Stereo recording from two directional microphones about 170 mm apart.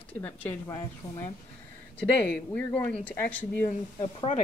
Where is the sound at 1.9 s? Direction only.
10° left (ahead or behind).